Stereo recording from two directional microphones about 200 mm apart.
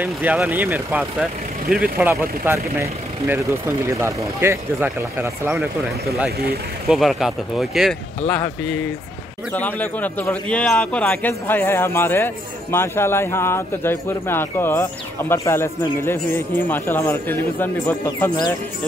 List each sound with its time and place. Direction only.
0.0 s speech: 10° right (ahead or behind)
6.9 s speech: centre (ahead or behind)
9.5 s speech: 10° left (ahead or behind)